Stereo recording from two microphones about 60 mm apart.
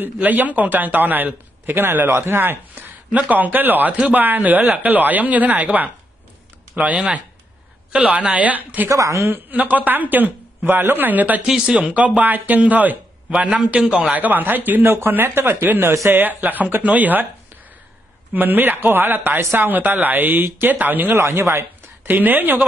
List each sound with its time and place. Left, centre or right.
0.0 s a man's voice: right
3.1 s speech: right
8.9 s a woman's voice: right
9.3 s a man's voice: right
11.4 s speech: centre
14.1 s a man's voice: right
18.3 s a man's voice: right
21.2 s speech: right
22.0 s a man's voice: right